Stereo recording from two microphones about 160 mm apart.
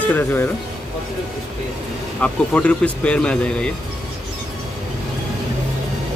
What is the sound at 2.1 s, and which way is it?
Speech, 5° left (ahead or behind).